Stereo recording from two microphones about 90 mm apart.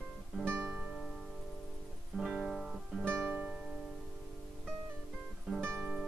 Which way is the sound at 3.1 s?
15° right (ahead or behind).